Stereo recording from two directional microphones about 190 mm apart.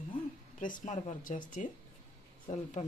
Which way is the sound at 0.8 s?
35° left (ahead or behind).